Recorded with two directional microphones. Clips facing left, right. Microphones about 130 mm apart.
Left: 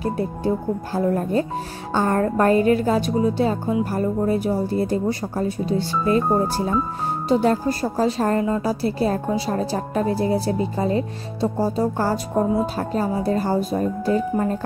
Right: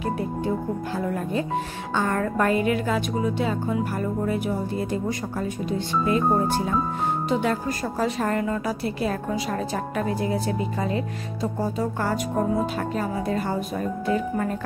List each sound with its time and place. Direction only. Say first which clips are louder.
0.9 s a woman's voice: left 7 dB; 40° left (ahead or behind)